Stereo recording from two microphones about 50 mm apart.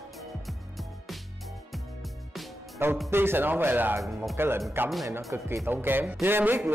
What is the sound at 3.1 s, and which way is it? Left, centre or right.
Speech, right.